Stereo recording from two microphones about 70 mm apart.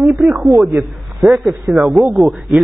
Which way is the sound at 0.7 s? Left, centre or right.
Right.